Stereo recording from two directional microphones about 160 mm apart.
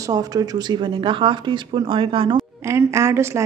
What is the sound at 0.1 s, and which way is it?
Speech, 25° right (ahead or behind).